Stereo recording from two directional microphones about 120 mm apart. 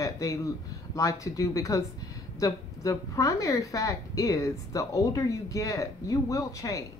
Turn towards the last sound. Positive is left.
turn(degrees=30)  # may be behind; listen again after turning